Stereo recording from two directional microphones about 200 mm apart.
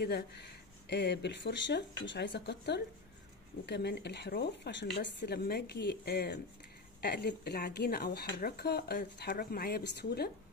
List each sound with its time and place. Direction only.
0.0 s speech: 55° left (ahead or behind)